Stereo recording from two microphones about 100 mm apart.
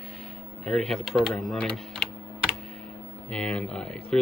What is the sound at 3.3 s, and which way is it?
Speech, 10° left (ahead or behind).